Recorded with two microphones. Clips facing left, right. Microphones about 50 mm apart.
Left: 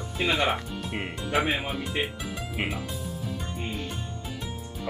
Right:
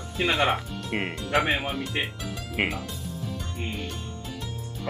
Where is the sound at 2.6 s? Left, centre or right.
Right.